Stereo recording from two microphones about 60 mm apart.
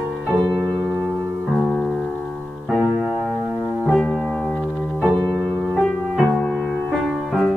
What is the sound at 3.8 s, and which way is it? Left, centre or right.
Music, left.